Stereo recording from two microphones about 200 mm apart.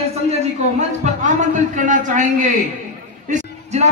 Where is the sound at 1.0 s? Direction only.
35° right (ahead or behind).